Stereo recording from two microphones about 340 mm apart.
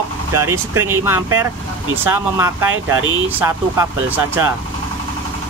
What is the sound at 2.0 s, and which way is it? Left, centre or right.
Speech, centre.